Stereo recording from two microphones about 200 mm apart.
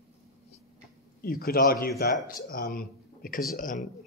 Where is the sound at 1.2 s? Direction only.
50° left (ahead or behind).